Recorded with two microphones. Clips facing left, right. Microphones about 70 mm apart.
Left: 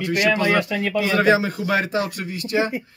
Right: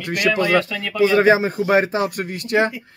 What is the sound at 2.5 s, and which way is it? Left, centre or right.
Speech, right.